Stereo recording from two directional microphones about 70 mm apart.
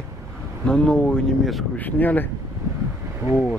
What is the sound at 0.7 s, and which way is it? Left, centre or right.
Speech, centre.